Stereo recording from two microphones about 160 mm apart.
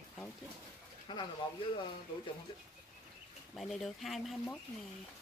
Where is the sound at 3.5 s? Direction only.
Centre (ahead or behind).